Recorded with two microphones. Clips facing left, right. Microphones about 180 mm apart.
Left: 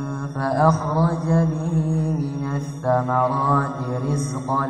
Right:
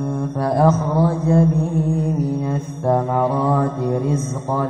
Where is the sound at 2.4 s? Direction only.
20° right (ahead or behind).